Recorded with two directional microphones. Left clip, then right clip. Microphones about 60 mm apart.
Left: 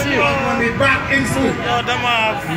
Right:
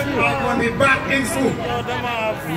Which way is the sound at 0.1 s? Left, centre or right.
Centre.